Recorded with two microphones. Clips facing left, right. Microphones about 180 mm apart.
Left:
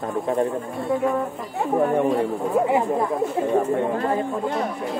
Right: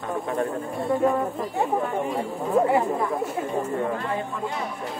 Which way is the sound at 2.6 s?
5° left (ahead or behind).